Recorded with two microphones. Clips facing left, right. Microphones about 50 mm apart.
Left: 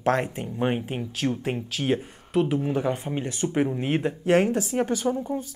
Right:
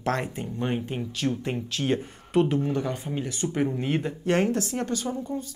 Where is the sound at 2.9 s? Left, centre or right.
Left.